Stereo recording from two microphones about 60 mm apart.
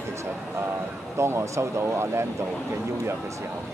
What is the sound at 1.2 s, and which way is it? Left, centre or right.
Speech, right.